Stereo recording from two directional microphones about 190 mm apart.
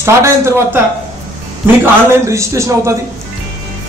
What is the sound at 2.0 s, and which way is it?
Speech, 15° right (ahead or behind).